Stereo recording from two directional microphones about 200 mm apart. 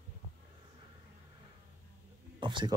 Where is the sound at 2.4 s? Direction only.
25° right (ahead or behind).